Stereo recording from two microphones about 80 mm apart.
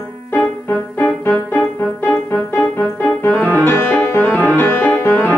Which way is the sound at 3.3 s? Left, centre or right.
Left.